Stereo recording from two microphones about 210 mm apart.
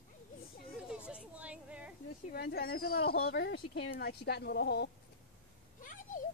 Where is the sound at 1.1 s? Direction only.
5° right (ahead or behind).